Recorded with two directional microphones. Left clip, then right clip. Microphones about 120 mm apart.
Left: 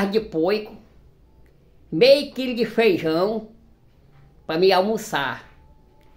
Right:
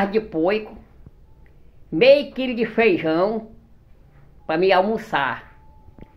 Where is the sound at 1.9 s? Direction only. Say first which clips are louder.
Right 1 dB; 30° left (ahead or behind).